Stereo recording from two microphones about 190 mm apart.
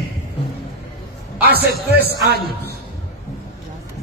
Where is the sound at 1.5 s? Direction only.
55° right (ahead or behind).